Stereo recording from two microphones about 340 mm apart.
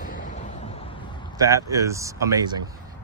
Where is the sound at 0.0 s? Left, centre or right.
Left.